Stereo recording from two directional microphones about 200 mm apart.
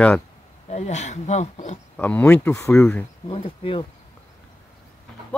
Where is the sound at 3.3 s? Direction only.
25° left (ahead or behind).